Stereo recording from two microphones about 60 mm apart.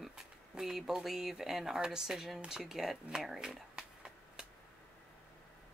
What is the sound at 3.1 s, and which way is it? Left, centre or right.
Shuffling cards, centre.